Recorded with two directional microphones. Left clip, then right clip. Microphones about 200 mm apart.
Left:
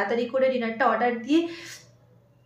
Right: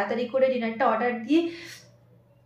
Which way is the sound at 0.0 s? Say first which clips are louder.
Even; 10° left (ahead or behind).